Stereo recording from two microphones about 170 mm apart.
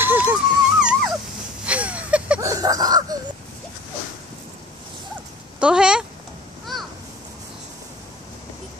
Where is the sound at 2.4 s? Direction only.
20° right (ahead or behind).